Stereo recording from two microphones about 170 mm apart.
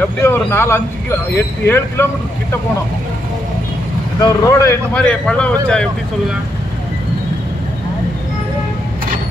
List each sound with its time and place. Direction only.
0.0 s speech: 15° left (ahead or behind)
4.2 s speech: 15° left (ahead or behind)
5.0 s speech: 5° left (ahead or behind)